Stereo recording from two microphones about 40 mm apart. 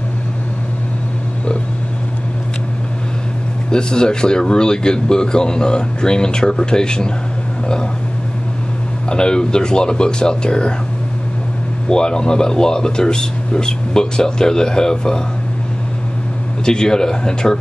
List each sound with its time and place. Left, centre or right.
3.7 s speech: centre
9.1 s speech: left
11.9 s speech: centre
16.6 s speech: centre